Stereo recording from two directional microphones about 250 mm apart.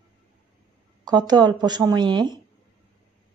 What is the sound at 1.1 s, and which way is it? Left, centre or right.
A woman's voice, centre.